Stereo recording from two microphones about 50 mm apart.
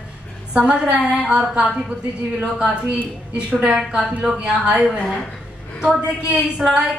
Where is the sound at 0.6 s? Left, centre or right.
Right.